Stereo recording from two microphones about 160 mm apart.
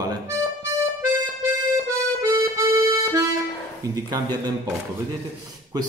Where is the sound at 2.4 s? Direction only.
20° right (ahead or behind).